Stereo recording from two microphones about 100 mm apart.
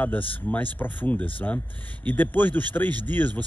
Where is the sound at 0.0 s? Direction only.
15° left (ahead or behind).